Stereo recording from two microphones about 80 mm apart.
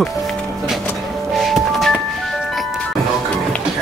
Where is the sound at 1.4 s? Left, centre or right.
Centre.